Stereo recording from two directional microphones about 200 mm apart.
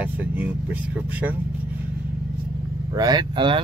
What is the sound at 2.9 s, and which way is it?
Speech, 20° right (ahead or behind).